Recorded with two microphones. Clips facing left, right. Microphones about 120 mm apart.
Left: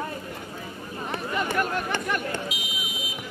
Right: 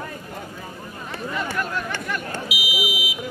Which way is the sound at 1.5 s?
50° left (ahead or behind).